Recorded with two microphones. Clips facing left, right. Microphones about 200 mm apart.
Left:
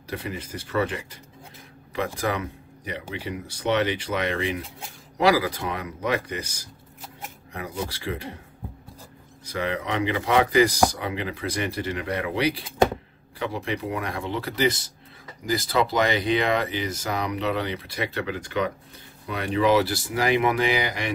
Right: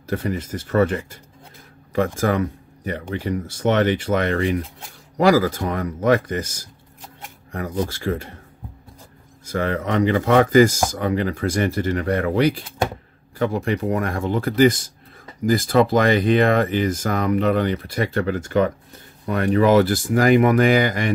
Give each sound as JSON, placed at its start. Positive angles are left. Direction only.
{"t": 0.1, "sound": "speech", "side_deg": -45}
{"t": 9.5, "sound": "speech", "side_deg": -50}